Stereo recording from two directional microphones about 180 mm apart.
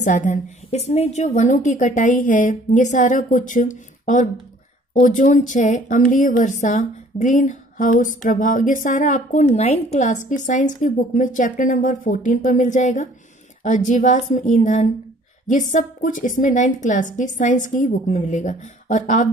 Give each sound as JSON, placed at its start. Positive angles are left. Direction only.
{"t": 0.0, "sound": "a woman's voice", "side_deg": 45}